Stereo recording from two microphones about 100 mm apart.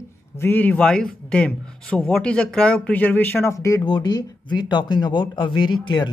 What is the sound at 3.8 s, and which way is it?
Speech, 45° left (ahead or behind).